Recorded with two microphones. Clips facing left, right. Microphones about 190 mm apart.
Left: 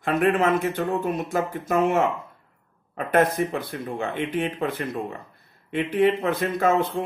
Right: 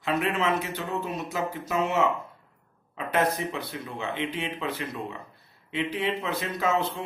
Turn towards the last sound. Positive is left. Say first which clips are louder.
# left 5 dB
turn(degrees=50)  # may be behind; listen again after turning